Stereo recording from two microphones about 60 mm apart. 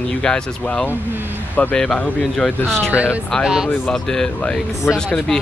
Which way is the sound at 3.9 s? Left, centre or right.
Centre.